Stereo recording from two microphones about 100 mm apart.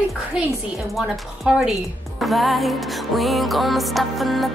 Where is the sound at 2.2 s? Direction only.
Centre (ahead or behind).